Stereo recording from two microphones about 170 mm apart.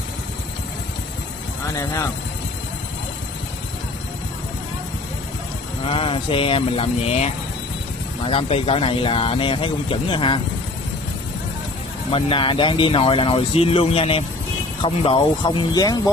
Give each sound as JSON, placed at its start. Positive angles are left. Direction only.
{"t": 5.9, "sound": "speech", "side_deg": 30}
{"t": 12.1, "sound": "speech", "side_deg": 30}